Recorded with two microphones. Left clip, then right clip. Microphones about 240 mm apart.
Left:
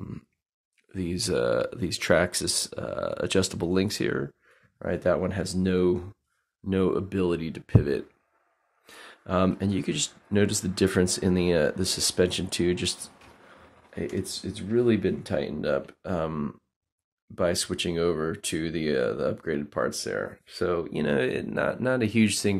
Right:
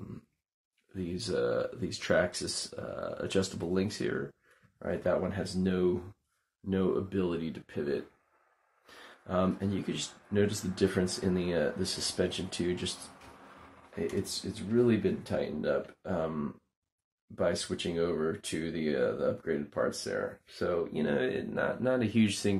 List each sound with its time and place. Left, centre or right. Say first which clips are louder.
0.9 s speech: left 6 dB; left
14.2 s speech: left 3 dB; left